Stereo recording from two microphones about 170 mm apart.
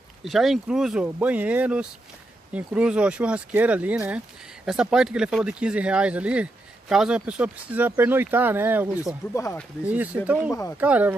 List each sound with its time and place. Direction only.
0.2 s speech: centre (ahead or behind)
9.3 s speech: 20° left (ahead or behind)
9.8 s speech: 10° right (ahead or behind)
10.5 s speech: 15° left (ahead or behind)
10.8 s speech: 10° right (ahead or behind)